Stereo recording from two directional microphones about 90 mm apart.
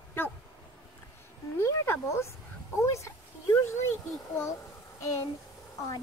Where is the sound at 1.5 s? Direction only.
25° left (ahead or behind).